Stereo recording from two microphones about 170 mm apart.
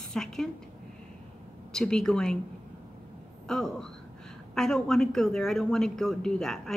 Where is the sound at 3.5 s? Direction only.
5° left (ahead or behind).